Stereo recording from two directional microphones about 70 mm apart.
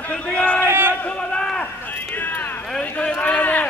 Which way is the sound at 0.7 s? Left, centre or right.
Right.